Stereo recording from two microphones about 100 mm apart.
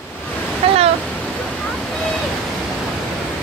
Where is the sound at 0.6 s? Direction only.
75° right (ahead or behind).